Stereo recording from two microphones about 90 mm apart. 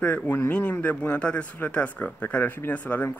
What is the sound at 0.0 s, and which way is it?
Speech, 15° left (ahead or behind).